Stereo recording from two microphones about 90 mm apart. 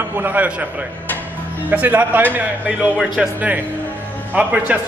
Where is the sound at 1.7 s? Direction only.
20° right (ahead or behind).